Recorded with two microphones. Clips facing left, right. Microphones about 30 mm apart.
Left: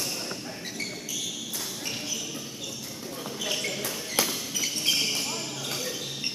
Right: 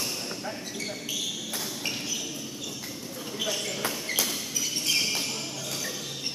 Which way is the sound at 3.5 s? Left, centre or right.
Centre.